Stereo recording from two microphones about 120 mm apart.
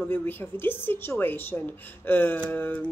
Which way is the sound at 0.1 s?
20° left (ahead or behind).